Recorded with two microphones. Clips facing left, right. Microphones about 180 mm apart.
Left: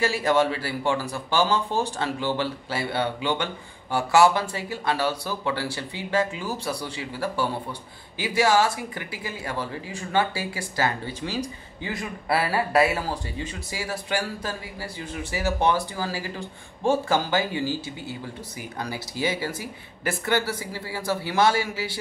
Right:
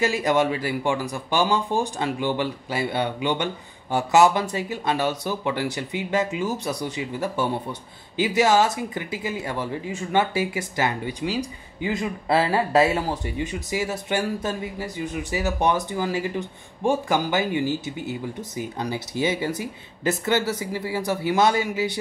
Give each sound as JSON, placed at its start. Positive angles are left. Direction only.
{"t": 0.0, "sound": "a man's voice", "side_deg": -20}